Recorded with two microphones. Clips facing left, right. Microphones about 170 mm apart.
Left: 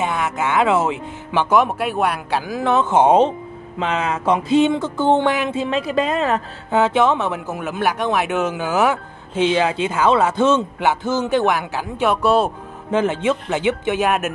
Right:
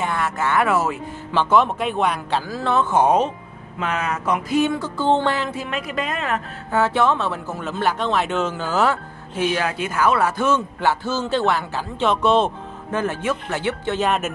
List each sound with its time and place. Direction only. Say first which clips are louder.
0.0 s speech: left 2 dB; 15° left (ahead or behind)
5.6 s a woman's voice: left 7 dB; 30° left (ahead or behind)
6.7 s speech: left 3 dB; 20° left (ahead or behind)
12.9 s speech: left 5 dB; 20° left (ahead or behind)